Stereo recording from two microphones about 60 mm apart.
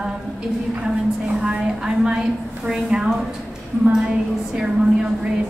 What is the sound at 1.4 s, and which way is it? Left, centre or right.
A woman's voice, centre.